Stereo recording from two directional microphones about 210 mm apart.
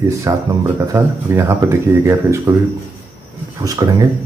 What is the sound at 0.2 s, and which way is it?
Speech, 15° right (ahead or behind).